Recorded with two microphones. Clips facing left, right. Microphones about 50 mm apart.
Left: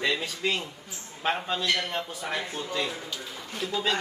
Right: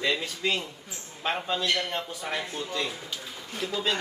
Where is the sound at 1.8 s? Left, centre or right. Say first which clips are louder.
Even; left.